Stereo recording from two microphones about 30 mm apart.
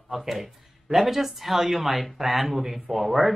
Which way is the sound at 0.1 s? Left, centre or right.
Centre.